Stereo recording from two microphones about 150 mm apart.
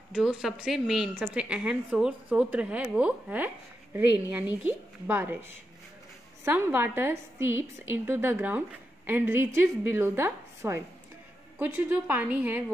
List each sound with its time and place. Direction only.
0.1 s a woman's voice: 5° right (ahead or behind)
6.4 s a woman's voice: 15° right (ahead or behind)